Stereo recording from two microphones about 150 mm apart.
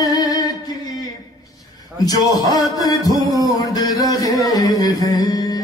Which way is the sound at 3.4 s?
25° left (ahead or behind).